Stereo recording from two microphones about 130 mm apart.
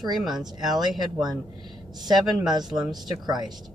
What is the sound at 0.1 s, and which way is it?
Speech, 5° right (ahead or behind).